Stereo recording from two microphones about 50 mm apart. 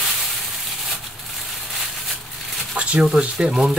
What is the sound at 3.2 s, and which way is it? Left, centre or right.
Speech, right.